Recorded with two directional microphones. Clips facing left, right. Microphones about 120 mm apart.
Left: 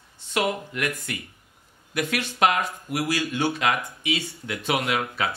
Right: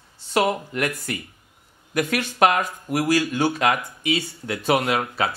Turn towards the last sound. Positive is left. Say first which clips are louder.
# right 4 dB
turn(degrees=-35)  # may be behind; listen again after turning